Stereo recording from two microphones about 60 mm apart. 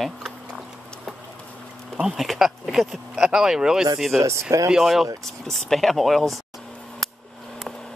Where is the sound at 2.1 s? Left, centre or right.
Centre.